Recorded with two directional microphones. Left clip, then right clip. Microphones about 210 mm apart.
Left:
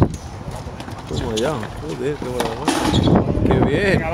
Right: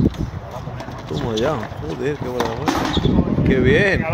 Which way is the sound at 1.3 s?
5° right (ahead or behind).